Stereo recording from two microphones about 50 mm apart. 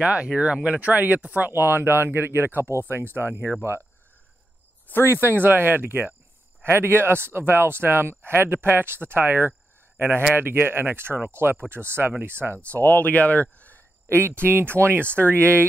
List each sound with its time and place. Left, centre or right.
0.0 s speech: right
4.8 s speech: left
5.1 s speech: right
12.5 s speech: left
14.0 s speech: right